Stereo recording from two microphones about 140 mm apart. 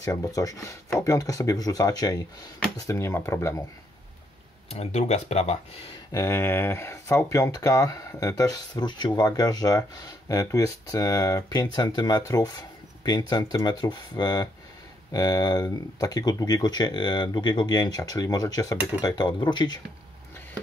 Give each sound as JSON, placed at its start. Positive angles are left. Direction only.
{"t": 0.0, "sound": "speech", "side_deg": 25}
{"t": 4.6, "sound": "speech", "side_deg": 50}
{"t": 6.1, "sound": "speech", "side_deg": 20}